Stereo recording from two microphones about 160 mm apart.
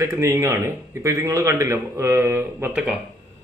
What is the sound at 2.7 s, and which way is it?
Speech, 5° right (ahead or behind).